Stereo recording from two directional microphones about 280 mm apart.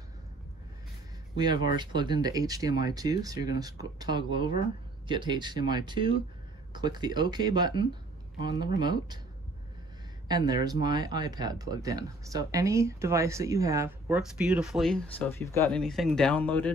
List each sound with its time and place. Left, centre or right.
1.3 s speech: centre
10.2 s speech: centre